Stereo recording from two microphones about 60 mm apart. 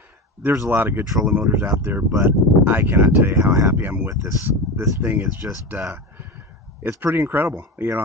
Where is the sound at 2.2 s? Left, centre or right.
Right.